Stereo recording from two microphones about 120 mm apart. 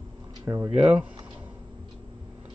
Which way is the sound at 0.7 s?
10° right (ahead or behind).